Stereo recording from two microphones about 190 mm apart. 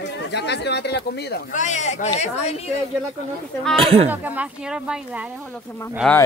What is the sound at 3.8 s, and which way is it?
Speech, 30° right (ahead or behind).